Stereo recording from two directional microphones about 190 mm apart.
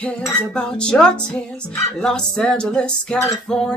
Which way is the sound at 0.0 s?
5° left (ahead or behind).